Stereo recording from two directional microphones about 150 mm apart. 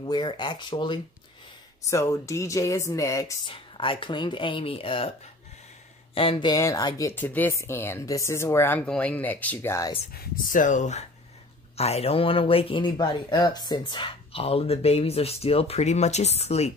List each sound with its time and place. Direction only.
0.0 s speech: 30° left (ahead or behind)
1.9 s speech: 20° left (ahead or behind)
3.4 s speech: 35° left (ahead or behind)
6.1 s speech: 35° left (ahead or behind); by 9.9 s 20° left (ahead or behind)
10.1 s speech: 65° left (ahead or behind); by 16.7 s 45° left (ahead or behind)